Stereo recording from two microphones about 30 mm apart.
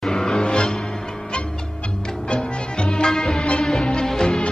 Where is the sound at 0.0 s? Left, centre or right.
Left.